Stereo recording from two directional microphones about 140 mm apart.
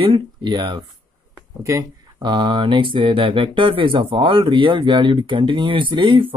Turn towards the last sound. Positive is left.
turn(degrees=-40)  # may be behind; listen again after turning